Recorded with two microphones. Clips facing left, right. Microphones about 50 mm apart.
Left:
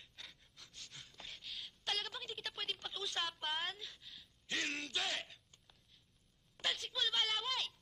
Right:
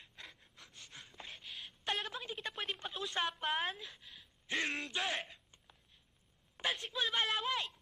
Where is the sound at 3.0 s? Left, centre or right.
Right.